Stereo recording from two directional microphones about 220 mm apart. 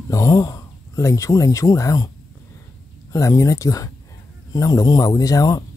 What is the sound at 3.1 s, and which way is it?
Speech, 15° left (ahead or behind).